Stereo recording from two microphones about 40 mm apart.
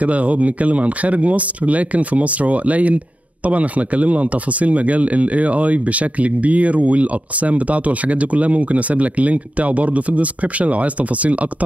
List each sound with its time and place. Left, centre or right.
0.0 s speech: right